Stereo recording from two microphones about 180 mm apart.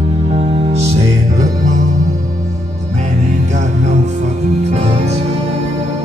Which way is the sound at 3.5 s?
40° right (ahead or behind).